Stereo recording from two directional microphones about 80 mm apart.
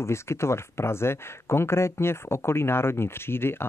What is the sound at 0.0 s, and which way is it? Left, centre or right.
Speech, left.